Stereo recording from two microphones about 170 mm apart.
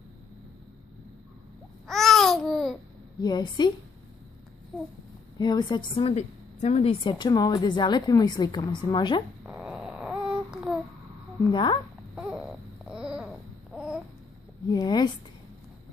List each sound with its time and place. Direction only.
1.9 s babbling: centre (ahead or behind)
3.2 s a woman's voice: 25° left (ahead or behind)
5.4 s a woman's voice: 25° left (ahead or behind)
9.5 s a sound: 5° right (ahead or behind)
11.5 s a woman's voice: 25° left (ahead or behind)
12.2 s baby cry: 5° right (ahead or behind)
14.8 s a woman's voice: 25° left (ahead or behind)